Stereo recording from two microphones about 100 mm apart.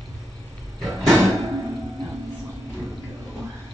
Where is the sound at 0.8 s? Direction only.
Centre (ahead or behind).